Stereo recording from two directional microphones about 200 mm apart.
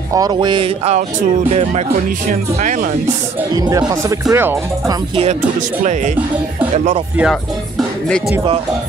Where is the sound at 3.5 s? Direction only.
20° right (ahead or behind).